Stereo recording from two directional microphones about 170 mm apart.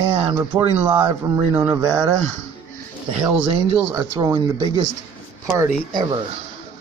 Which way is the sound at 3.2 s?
5° right (ahead or behind).